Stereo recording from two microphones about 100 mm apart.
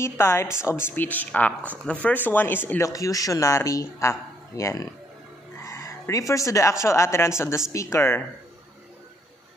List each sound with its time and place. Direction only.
0.0 s a woman's voice: 25° left (ahead or behind)
2.8 s a man's voice: 35° left (ahead or behind)